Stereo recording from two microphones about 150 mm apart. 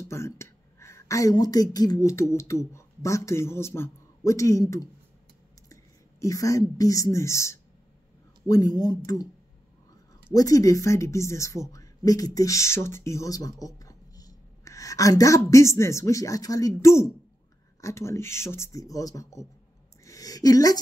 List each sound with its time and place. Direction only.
0.0 s speech: 20° left (ahead or behind)
6.2 s speech: 20° left (ahead or behind)
10.3 s speech: 25° left (ahead or behind)
20.1 s a sound: 25° left (ahead or behind)